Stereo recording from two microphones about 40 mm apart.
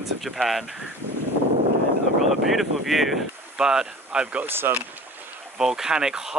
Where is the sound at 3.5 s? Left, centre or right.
Centre.